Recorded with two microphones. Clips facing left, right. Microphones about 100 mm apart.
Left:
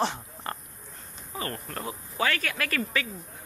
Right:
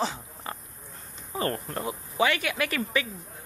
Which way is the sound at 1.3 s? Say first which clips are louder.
Right 5 dB; 30° right (ahead or behind).